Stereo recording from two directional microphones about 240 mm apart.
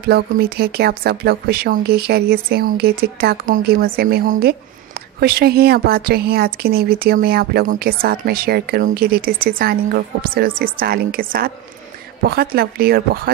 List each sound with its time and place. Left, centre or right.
0.0 s speech: right